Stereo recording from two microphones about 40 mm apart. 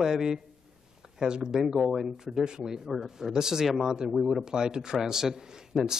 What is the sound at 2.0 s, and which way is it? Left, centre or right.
Speech, centre.